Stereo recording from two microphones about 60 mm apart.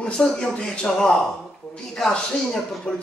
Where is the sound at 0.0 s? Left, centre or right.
Centre.